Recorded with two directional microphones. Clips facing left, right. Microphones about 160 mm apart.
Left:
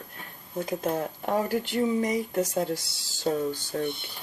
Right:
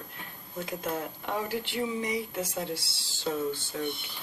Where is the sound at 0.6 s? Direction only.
40° left (ahead or behind).